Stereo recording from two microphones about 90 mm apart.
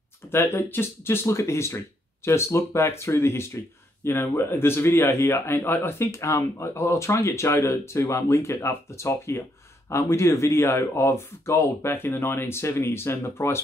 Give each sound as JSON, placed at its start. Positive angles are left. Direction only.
{"t": 0.3, "sound": "speech", "side_deg": 30}